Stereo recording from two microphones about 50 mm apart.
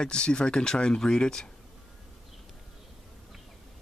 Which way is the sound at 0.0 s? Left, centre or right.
Centre.